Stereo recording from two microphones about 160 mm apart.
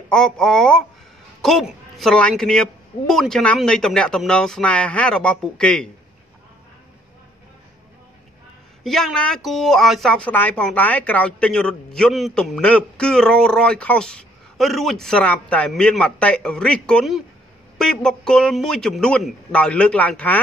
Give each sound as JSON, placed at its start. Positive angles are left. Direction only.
{"t": 0.1, "sound": "speech", "side_deg": 5}
{"t": 8.8, "sound": "speech", "side_deg": 0}